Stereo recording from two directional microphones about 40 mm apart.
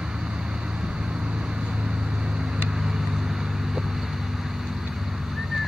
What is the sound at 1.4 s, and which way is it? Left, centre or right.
Vehicle, centre.